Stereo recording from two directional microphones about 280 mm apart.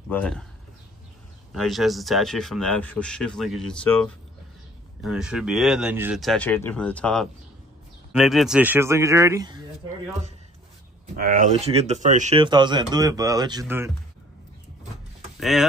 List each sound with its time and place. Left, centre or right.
0.1 s speech: centre
1.5 s speech: centre
11.1 s speech: right; by 13.9 s centre